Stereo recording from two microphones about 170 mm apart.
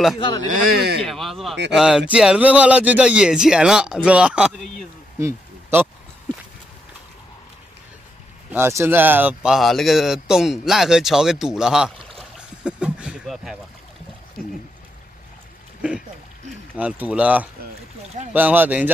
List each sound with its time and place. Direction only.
0.5 s speech: 65° right (ahead or behind)
1.0 s speech: centre (ahead or behind)
5.2 s a sound: 15° right (ahead or behind)
8.5 s speech: 15° right (ahead or behind)
12.2 s boat: 5° right (ahead or behind)
15.8 s speech: 10° right (ahead or behind)